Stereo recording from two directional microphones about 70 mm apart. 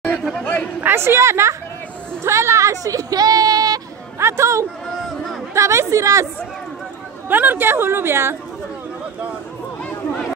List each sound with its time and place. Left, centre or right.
0.4 s chatter: centre
0.7 s a woman's voice: right
4.2 s a woman's voice: right
7.2 s a woman's voice: right